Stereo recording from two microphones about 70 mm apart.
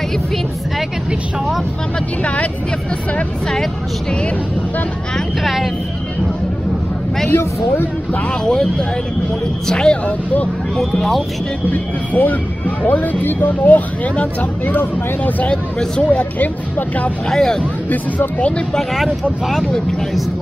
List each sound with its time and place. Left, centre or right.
2.2 s speech: centre
5.1 s speech: centre
7.2 s speech: left
8.1 s speech: centre
9.7 s speech: centre
10.0 s speech: left
10.8 s speech: centre
11.7 s speech: left
17.3 s speech: centre
17.8 s speech: left
18.7 s speech: centre